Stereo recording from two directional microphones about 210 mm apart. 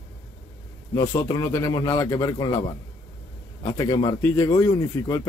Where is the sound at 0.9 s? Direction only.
15° left (ahead or behind).